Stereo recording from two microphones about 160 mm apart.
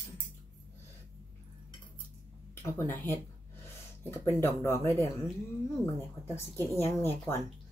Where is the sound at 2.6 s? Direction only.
15° left (ahead or behind).